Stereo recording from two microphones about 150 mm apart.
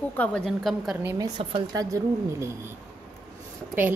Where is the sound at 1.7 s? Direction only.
25° right (ahead or behind).